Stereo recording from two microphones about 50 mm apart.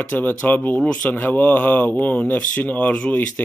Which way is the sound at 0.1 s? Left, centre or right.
Left.